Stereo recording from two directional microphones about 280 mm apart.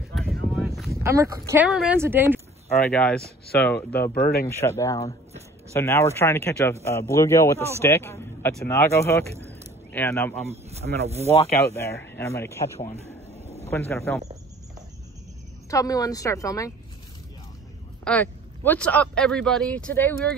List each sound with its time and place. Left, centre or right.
0.1 s a sound: centre
0.7 s speech: centre
2.9 s speech: centre
4.1 s speech: left
4.5 s speech: centre
10.5 s speech: right
12.2 s speech: centre
15.7 s speech: centre
18.0 s speech: centre